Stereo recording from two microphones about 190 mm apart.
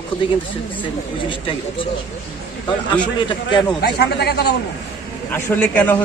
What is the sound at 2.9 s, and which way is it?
Speech, 25° left (ahead or behind).